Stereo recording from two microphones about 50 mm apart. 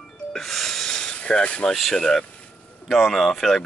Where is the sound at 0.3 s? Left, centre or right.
Centre.